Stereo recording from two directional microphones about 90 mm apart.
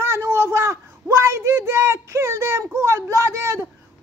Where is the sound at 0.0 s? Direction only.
25° right (ahead or behind).